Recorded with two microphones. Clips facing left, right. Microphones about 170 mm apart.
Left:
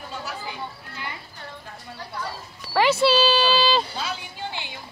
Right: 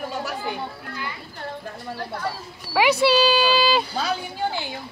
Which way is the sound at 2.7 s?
10° right (ahead or behind).